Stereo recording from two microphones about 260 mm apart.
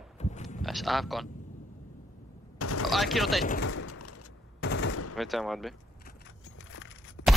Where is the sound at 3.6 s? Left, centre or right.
Left.